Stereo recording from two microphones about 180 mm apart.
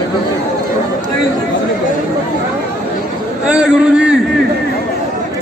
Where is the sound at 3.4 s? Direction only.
5° right (ahead or behind).